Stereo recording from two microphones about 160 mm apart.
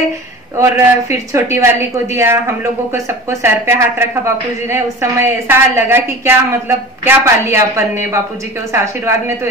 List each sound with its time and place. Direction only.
0.6 s speech: 15° right (ahead or behind)